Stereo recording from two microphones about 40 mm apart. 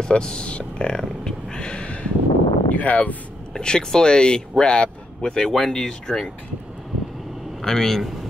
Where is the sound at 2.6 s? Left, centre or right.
Left.